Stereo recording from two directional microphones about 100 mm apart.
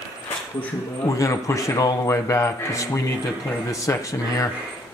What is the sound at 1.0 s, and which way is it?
A man's voice, 30° left (ahead or behind).